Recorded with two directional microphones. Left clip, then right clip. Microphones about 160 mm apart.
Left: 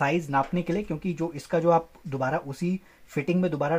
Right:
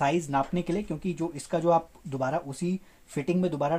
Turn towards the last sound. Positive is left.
turn(degrees=25)  # may be behind; listen again after turning